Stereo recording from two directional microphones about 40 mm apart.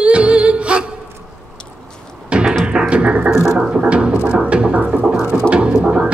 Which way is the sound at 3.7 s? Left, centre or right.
Right.